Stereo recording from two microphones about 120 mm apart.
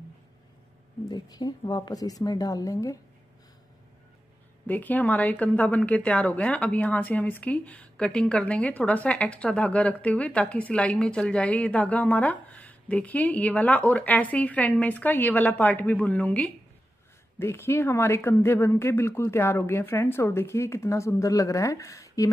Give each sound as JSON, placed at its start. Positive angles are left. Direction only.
{"t": 1.0, "sound": "a woman's voice", "side_deg": 35}
{"t": 4.6, "sound": "a woman's voice", "side_deg": 15}